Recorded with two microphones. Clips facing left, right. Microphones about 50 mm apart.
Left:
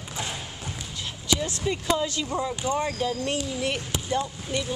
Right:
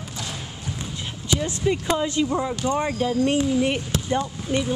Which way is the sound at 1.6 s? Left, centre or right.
Centre.